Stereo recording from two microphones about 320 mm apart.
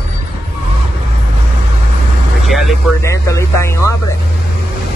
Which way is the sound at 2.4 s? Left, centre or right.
Centre.